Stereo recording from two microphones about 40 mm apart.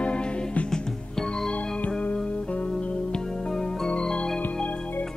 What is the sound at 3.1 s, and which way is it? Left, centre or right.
Music, centre.